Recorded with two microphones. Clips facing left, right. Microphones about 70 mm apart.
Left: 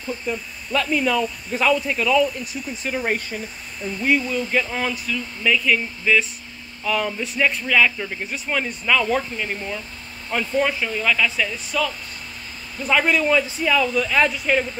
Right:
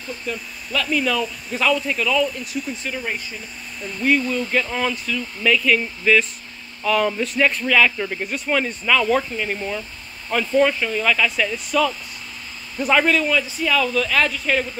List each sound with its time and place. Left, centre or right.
0.3 s speech: centre
4.0 s speech: centre
13.0 s speech: centre